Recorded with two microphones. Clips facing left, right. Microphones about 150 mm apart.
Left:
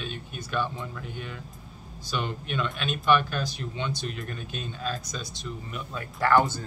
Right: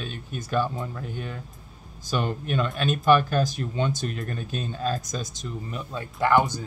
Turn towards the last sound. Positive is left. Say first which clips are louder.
# right 1 dB
turn(degrees=-15)  # may be behind; listen again after turning